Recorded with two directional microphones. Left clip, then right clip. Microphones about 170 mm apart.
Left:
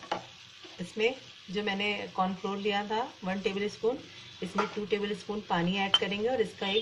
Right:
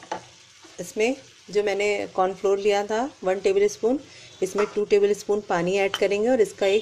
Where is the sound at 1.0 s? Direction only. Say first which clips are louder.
Right 6 dB; 75° right (ahead or behind).